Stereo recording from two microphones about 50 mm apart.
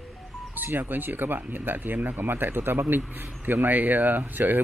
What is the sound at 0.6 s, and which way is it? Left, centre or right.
Speech, right.